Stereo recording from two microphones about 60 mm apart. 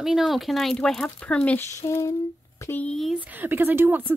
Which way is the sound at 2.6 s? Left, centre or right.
Left.